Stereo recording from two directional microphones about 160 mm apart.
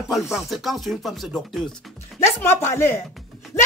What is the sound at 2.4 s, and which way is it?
Speech, 15° left (ahead or behind).